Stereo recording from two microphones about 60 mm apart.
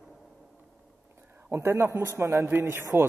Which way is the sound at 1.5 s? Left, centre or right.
Right.